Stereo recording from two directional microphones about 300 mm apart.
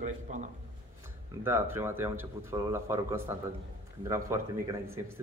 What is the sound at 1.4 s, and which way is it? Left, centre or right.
Speech, centre.